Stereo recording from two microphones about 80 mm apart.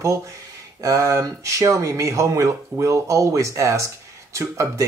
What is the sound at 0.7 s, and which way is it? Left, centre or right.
Speech, right.